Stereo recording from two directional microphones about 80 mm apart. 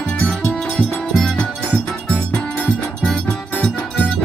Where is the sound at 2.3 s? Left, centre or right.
Centre.